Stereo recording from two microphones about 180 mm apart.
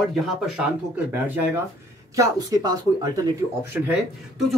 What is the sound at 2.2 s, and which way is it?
Speech, 20° right (ahead or behind).